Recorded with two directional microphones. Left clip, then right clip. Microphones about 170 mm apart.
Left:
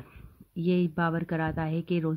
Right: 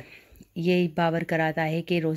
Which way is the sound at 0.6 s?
15° right (ahead or behind).